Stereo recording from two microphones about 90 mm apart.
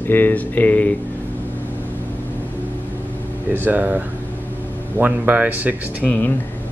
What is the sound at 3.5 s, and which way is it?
A man's voice, 20° right (ahead or behind).